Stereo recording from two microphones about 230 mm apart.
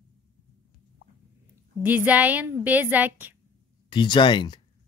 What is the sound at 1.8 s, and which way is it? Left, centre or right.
A woman's voice, centre.